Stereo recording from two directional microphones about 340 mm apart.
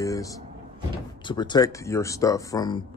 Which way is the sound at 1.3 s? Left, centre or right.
Centre.